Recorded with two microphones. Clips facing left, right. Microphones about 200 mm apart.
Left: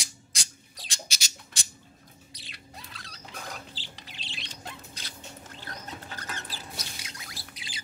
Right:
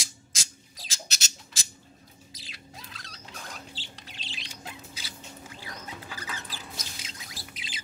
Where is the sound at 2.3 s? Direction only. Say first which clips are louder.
Right 1 dB; centre (ahead or behind).